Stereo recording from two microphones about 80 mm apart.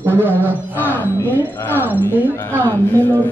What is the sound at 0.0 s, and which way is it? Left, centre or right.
Speech, right.